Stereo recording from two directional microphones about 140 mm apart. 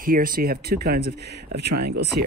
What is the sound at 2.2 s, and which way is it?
Speech, 90° right.